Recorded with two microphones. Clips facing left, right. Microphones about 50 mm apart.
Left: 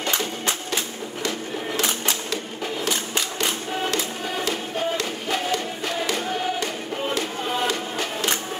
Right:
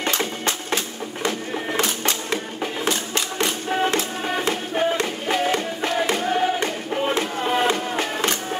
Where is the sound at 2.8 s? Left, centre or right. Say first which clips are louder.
Right 2 dB; right.